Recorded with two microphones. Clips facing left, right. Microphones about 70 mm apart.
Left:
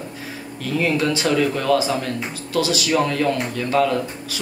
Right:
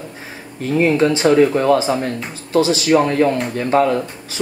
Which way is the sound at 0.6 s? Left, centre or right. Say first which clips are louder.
Right 6 dB; right.